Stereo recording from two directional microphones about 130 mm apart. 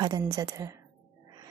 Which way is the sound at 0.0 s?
30° right (ahead or behind).